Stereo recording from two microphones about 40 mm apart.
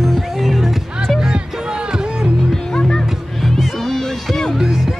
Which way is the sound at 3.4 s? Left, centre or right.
Centre.